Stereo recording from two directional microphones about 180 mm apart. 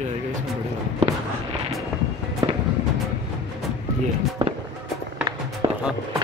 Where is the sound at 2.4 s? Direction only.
25° right (ahead or behind).